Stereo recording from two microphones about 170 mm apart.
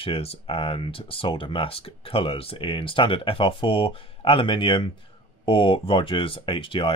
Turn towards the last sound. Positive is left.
turn(degrees=30)  # may be behind; listen again after turning